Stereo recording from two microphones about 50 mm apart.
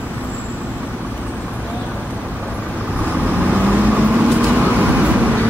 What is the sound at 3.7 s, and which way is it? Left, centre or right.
Vehicle, right.